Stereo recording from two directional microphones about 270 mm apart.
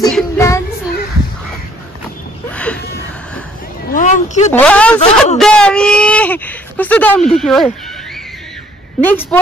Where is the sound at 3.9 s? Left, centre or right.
Left.